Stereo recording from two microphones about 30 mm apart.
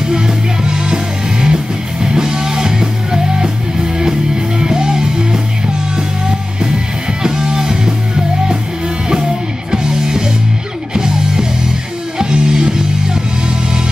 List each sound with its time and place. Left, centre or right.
0.1 s music: right
4.6 s music: right
7.2 s music: right
9.7 s music: right